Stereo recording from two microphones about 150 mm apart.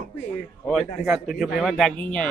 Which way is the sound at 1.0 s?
Centre (ahead or behind).